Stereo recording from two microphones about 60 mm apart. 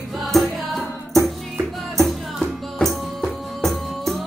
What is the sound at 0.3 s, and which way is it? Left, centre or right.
Music, centre.